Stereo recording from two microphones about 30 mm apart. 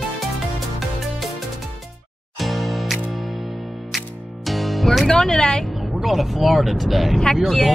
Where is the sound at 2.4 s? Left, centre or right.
Centre.